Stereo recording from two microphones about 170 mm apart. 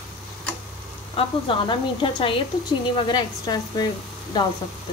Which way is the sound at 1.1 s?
30° left (ahead or behind).